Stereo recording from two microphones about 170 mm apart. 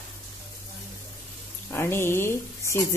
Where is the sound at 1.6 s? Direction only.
15° left (ahead or behind).